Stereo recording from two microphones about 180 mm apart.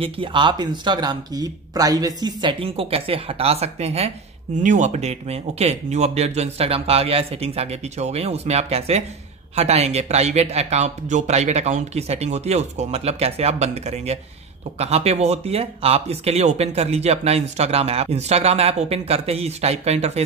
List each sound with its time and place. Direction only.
0.0 s speech: 30° right (ahead or behind)